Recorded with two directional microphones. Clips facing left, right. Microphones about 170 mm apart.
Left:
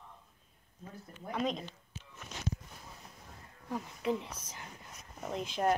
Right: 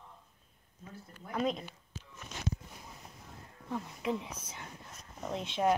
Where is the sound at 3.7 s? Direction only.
Centre (ahead or behind).